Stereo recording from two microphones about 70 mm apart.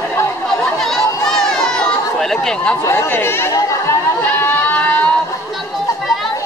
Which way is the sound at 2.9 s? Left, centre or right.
Left.